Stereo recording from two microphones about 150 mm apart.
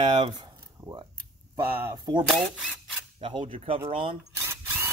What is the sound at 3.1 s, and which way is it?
Speech, 35° right (ahead or behind).